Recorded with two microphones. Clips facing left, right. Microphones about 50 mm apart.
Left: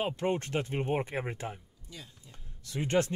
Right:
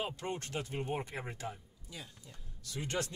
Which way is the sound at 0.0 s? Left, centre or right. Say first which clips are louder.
Left 8 dB; left.